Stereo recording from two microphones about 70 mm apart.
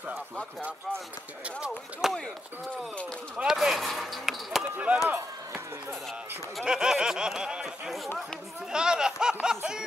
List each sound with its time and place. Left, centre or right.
2.0 s speech: centre
3.4 s speech: centre
4.7 s speech: centre
6.6 s a sound: centre